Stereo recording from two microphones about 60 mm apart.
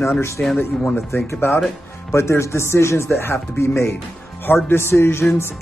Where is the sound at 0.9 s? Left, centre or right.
Left.